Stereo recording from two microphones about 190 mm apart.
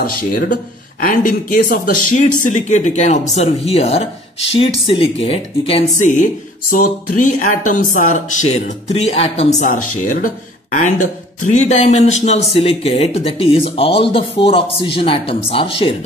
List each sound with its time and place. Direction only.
0.0 s speech: 45° left (ahead or behind); by 15.9 s 30° left (ahead or behind)